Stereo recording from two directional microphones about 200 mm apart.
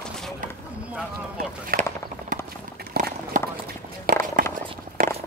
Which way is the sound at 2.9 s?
50° right (ahead or behind).